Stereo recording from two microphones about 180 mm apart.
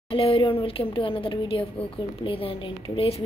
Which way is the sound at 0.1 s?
30° left (ahead or behind).